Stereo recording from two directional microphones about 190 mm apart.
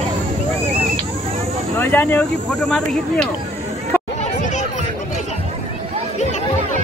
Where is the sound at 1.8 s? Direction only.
5° left (ahead or behind).